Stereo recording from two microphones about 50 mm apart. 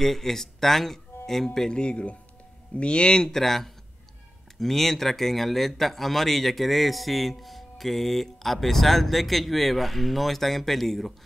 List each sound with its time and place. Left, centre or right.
0.0 s speech: centre
1.8 s speech: left; by 11.1 s centre